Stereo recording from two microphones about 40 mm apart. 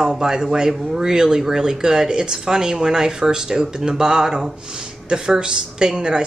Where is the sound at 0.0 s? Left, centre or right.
Centre.